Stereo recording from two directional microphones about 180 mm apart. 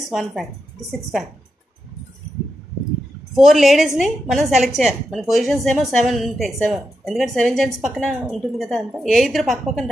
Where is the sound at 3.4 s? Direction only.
Centre (ahead or behind).